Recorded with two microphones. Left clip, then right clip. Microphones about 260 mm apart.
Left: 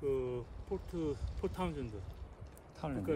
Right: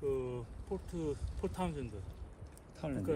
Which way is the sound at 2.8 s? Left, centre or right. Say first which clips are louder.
Even; left.